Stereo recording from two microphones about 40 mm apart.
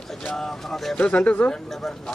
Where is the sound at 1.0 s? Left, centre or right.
Left.